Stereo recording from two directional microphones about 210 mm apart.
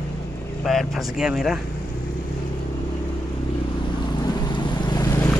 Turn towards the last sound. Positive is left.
turn(degrees=15)  # may be behind; listen again after turning